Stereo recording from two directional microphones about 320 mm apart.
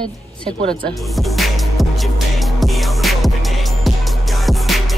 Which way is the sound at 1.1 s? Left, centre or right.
Centre.